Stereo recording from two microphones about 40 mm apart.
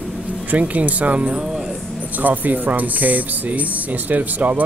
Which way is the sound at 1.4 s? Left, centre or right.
Centre.